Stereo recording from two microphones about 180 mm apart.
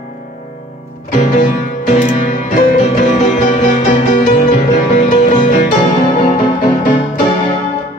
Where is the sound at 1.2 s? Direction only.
45° left (ahead or behind).